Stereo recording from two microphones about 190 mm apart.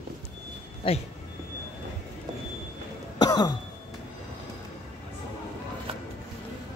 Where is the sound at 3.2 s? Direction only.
20° left (ahead or behind).